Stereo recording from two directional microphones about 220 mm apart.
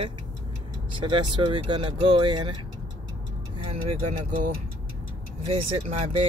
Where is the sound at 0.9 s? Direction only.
20° right (ahead or behind).